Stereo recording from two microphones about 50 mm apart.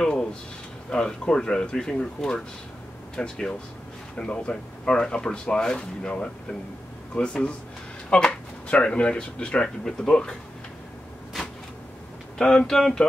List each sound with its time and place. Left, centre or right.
0.0 s a sound: centre
0.8 s speech: centre
12.4 s speech: centre